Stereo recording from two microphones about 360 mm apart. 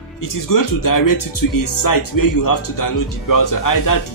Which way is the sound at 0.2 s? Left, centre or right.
Left.